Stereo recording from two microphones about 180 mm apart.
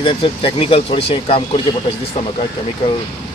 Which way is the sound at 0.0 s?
30° left (ahead or behind).